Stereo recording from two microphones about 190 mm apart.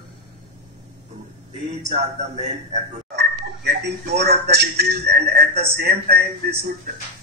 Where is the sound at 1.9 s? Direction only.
35° right (ahead or behind).